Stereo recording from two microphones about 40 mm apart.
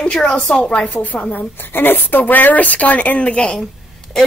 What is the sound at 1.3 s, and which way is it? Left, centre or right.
A woman's voice, left.